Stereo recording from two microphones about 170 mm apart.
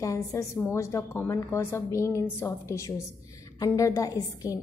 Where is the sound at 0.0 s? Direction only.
20° left (ahead or behind).